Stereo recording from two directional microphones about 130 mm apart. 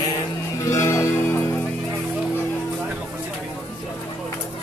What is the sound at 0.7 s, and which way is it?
Music, 25° left (ahead or behind).